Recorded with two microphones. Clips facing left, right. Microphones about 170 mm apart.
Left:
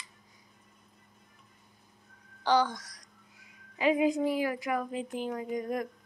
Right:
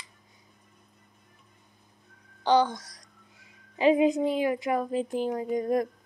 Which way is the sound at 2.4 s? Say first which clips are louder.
Right 4 dB; 20° right (ahead or behind).